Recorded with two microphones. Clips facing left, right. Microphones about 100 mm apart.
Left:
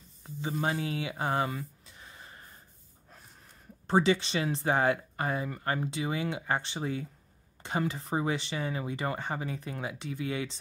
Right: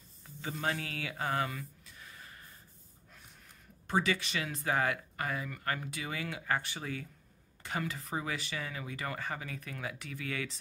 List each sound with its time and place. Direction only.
0.5 s speech: 20° left (ahead or behind)
3.8 s speech: 30° left (ahead or behind)